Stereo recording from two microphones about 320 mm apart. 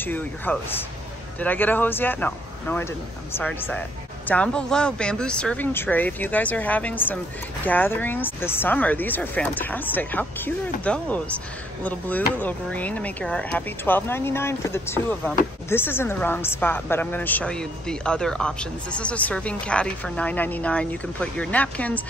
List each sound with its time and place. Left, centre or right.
0.0 s a woman's voice: centre